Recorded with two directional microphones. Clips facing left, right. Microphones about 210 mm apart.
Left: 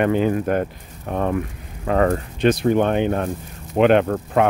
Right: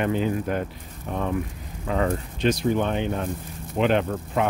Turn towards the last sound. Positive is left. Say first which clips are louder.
# left 6 dB
turn(degrees=60)  # may be behind; listen again after turning